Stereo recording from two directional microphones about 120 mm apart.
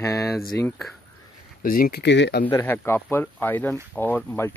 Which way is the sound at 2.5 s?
20° left (ahead or behind).